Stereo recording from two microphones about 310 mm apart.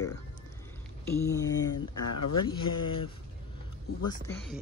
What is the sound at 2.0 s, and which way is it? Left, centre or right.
Speech, left.